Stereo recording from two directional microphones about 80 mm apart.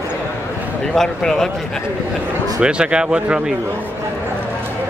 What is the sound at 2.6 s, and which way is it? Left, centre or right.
Speech, centre.